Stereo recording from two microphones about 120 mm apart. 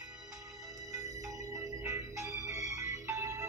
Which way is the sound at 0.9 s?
25° right (ahead or behind).